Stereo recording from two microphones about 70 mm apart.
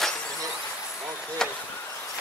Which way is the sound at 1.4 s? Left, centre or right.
Centre.